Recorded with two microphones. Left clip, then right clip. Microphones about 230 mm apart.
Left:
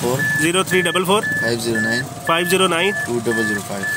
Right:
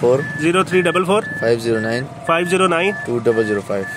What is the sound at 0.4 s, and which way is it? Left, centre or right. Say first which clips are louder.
Speech: right 1 dB; centre.